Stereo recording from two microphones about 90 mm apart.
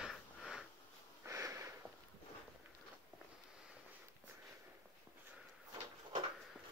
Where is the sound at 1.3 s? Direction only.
35° right (ahead or behind).